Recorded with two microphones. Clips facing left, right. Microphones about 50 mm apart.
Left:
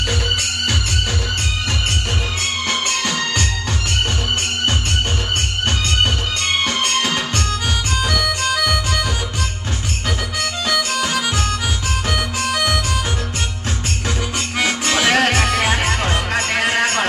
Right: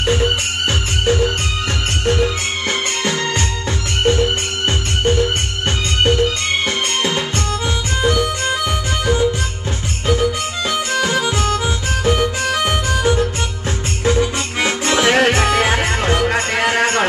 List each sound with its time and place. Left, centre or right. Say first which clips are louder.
0.1 s music: right 4 dB; right
3.0 s music: right 2 dB; right
6.0 s music: right 5 dB; right
10.7 s music: right 2 dB; right